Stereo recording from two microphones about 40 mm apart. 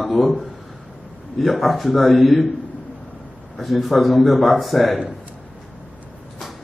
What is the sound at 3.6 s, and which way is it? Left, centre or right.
Speech, centre.